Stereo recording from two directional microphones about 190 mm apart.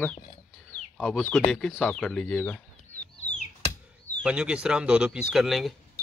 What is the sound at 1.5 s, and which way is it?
Speech, 5° left (ahead or behind).